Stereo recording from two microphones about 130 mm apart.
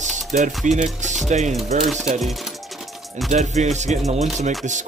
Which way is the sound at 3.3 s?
60° right (ahead or behind).